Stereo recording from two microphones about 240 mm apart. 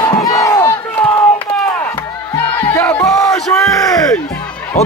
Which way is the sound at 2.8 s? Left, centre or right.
Centre.